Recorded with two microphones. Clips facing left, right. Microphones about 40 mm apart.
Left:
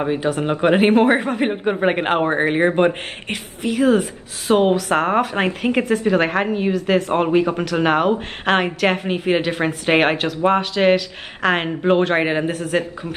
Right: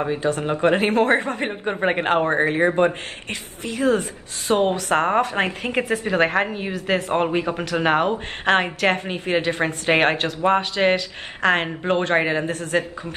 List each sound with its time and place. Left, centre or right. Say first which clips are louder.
0.0 s speech: left 2 dB; centre
3.7 s a woman's voice: left 4 dB; centre